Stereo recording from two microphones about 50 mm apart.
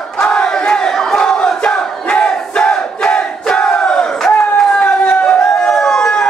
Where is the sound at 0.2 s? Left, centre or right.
Centre.